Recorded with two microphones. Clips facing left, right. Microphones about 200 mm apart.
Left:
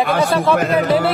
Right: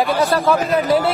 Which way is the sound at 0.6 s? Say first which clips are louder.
Left 1 dB; 60° left (ahead or behind).